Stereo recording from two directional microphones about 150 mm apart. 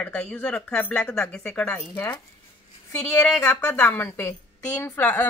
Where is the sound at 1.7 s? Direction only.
15° left (ahead or behind).